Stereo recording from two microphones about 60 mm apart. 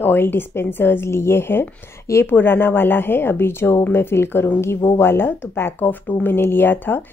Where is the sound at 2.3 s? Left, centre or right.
Left.